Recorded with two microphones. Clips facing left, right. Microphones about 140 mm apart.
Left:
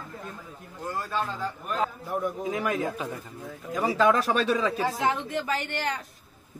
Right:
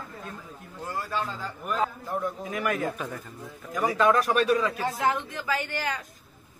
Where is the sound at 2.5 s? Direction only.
20° left (ahead or behind).